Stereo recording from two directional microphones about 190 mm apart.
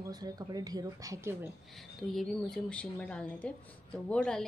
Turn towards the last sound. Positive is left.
turn(degrees=5)  # may be behind; listen again after turning